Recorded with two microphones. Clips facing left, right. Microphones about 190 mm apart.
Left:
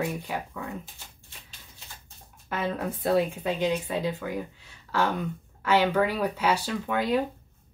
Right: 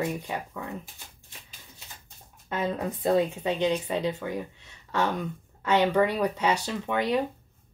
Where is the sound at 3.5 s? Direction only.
20° right (ahead or behind).